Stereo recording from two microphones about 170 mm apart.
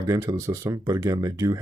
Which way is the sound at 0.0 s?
20° right (ahead or behind).